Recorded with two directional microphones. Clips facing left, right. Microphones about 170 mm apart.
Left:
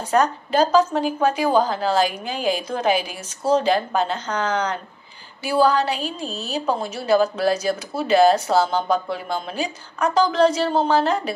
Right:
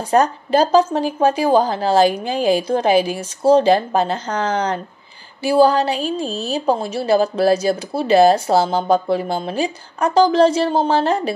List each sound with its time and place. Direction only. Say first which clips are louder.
0.1 s a woman's voice: right 4 dB; 30° right (ahead or behind)